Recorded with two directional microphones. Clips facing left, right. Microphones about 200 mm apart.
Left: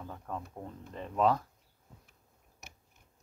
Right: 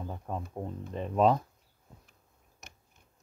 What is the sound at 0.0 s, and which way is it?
Speech, 20° right (ahead or behind).